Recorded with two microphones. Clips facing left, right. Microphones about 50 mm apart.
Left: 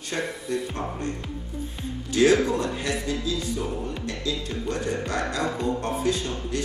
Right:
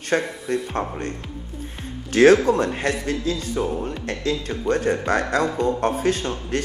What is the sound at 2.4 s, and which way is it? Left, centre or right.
Speech, right.